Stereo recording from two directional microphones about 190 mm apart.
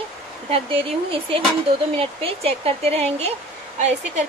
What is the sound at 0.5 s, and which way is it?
Speech, 30° right (ahead or behind).